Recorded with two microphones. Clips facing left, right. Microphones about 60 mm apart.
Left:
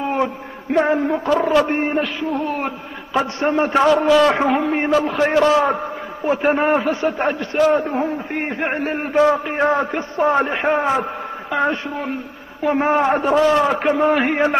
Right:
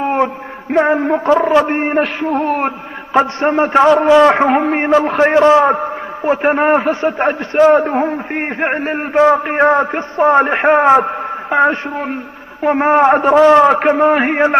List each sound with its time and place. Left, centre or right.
0.0 s a man's voice: right
4.5 s a man's voice: right
7.7 s a man's voice: right
8.0 s a man's voice: right
10.4 s a man's voice: right